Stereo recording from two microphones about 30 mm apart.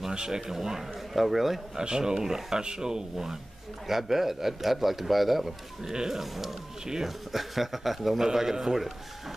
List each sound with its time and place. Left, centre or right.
0.1 s speech: right
0.5 s speech: centre
1.8 s speech: right
3.8 s a man's voice: centre